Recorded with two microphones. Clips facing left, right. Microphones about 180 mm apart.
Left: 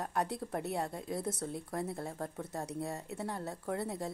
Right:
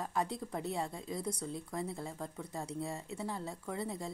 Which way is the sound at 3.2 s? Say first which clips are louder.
Left 2 dB; 60° left (ahead or behind).